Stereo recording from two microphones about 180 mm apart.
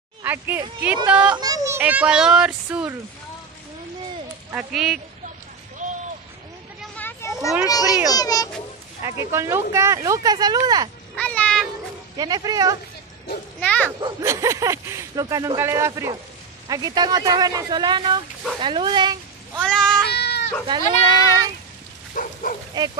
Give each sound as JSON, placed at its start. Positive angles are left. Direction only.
{"t": 0.2, "sound": "speech", "side_deg": -10}
{"t": 1.3, "sound": "speech", "side_deg": -20}
{"t": 4.5, "sound": "speech", "side_deg": -5}
{"t": 7.0, "sound": "children playing", "side_deg": 15}
{"t": 7.6, "sound": "speech", "side_deg": 20}
{"t": 9.0, "sound": "speech", "side_deg": -15}
{"t": 11.1, "sound": "a sound", "side_deg": 5}
{"t": 12.2, "sound": "speech", "side_deg": -20}
{"t": 13.6, "sound": "speech", "side_deg": 5}
{"t": 14.0, "sound": "speech", "side_deg": -15}
{"t": 19.6, "sound": "a sound", "side_deg": 5}
{"t": 20.1, "sound": "goat", "side_deg": 65}
{"t": 20.6, "sound": "speech", "side_deg": -25}
{"t": 22.1, "sound": "bow-wow", "side_deg": 50}